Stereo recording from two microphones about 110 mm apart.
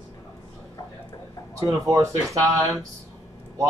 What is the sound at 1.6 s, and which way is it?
Speech, 30° right (ahead or behind).